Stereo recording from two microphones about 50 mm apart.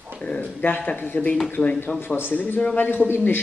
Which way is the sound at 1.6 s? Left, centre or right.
Left.